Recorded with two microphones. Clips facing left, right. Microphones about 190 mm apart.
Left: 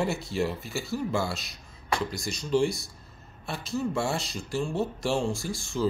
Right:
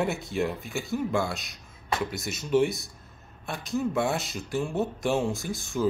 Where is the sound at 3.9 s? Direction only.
Centre (ahead or behind).